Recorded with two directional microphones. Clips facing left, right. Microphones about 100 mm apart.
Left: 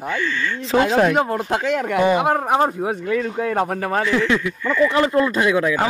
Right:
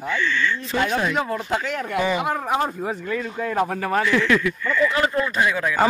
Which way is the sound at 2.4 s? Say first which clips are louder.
Left 5 dB; 40° left (ahead or behind).